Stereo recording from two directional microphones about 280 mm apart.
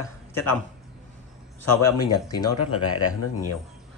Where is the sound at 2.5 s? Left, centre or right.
Left.